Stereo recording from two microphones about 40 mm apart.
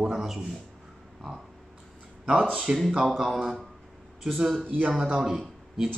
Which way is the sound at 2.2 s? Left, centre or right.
Right.